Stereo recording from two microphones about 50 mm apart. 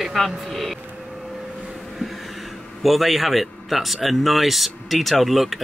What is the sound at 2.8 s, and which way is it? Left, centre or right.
Speech, centre.